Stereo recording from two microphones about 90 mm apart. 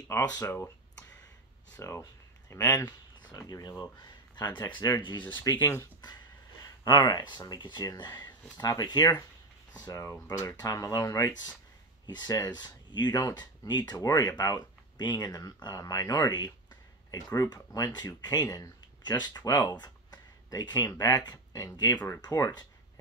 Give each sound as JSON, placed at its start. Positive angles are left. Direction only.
{"t": 0.2, "sound": "speech", "side_deg": 45}
{"t": 1.8, "sound": "speech", "side_deg": 35}
{"t": 3.3, "sound": "speech", "side_deg": 45}
{"t": 3.8, "sound": "a sound", "side_deg": 55}
{"t": 4.6, "sound": "speech", "side_deg": 55}
{"t": 5.4, "sound": "speech", "side_deg": 40}
{"t": 6.6, "sound": "speech", "side_deg": 45}
{"t": 7.8, "sound": "speech", "side_deg": 45}
{"t": 19.7, "sound": "a sound", "side_deg": 50}
{"t": 20.9, "sound": "speech", "side_deg": 40}